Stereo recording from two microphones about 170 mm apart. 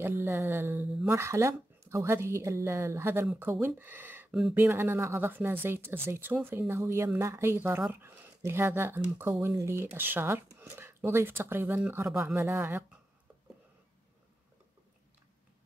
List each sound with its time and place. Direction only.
0.0 s speech: 15° right (ahead or behind)